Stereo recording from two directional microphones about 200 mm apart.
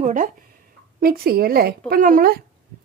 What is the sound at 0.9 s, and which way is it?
Speech, 50° right (ahead or behind).